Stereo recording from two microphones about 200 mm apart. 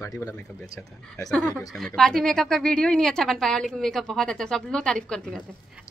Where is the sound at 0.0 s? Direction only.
15° left (ahead or behind).